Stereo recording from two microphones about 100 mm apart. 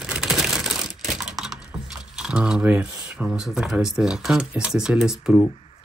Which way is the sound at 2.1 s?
10° right (ahead or behind).